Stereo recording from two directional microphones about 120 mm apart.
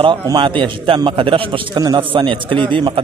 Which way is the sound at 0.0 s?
40° right (ahead or behind).